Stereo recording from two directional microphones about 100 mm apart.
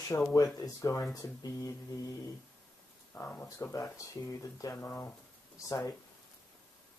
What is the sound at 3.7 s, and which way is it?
Speech, 35° left (ahead or behind).